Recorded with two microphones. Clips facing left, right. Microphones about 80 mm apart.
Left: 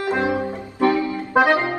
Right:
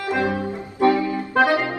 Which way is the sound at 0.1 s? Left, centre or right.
Left.